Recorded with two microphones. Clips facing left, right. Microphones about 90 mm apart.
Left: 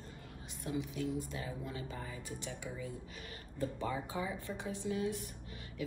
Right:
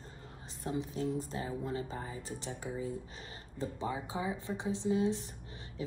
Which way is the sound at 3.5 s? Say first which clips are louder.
Right 1 dB; 20° right (ahead or behind).